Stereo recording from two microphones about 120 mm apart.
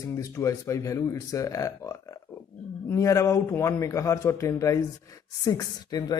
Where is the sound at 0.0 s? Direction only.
25° left (ahead or behind).